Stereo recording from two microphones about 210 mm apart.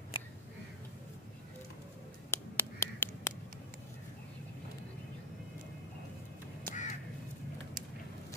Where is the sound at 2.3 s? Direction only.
10° left (ahead or behind).